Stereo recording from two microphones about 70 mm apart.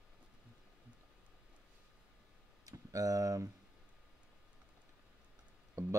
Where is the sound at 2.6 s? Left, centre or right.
Right.